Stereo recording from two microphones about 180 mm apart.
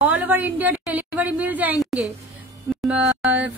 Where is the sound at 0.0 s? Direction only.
10° right (ahead or behind).